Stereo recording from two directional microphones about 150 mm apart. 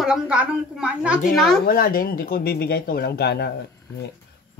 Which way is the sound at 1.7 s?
75° left (ahead or behind).